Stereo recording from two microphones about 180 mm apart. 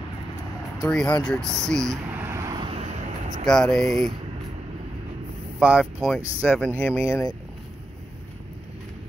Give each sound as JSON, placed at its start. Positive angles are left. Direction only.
{"t": 0.8, "sound": "speech", "side_deg": 5}
{"t": 1.9, "sound": "a sound", "side_deg": -15}
{"t": 3.4, "sound": "speech", "side_deg": 5}
{"t": 5.6, "sound": "speech", "side_deg": -5}
{"t": 7.1, "sound": "speech", "side_deg": 15}